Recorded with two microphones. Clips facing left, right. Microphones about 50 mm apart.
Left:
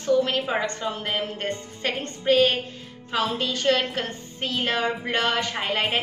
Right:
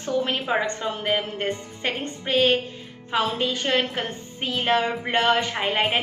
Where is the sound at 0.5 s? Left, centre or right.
Centre.